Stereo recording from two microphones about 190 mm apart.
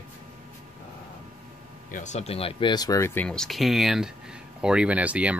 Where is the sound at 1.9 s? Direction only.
40° left (ahead or behind).